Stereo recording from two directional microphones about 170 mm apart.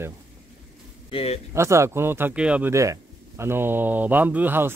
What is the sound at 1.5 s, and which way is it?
Speech, 15° right (ahead or behind).